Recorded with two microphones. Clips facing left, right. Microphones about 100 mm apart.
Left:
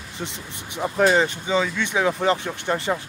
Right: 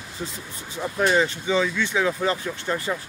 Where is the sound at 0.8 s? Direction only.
35° left (ahead or behind).